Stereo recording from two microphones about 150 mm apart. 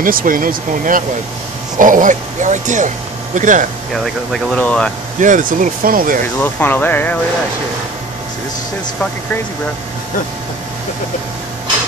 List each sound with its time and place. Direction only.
0.0 s speech: 70° right (ahead or behind)
3.9 s speech: centre (ahead or behind)
5.2 s speech: 60° right (ahead or behind)
6.2 s speech: 15° left (ahead or behind)